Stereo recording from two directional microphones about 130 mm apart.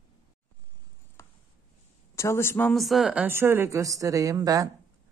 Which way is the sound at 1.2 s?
20° left (ahead or behind).